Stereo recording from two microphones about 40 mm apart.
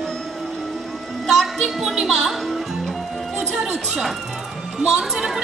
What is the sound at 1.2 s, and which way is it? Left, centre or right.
Music, centre.